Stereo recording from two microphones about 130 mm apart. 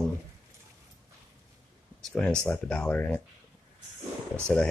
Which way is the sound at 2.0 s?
5° left (ahead or behind).